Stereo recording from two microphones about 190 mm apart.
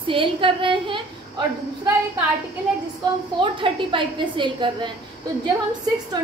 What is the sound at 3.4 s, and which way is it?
A woman's voice, 25° right (ahead or behind).